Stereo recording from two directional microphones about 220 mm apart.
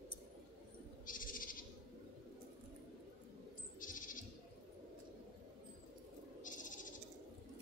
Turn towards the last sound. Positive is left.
turn(degrees=35)  # may be behind; listen again after turning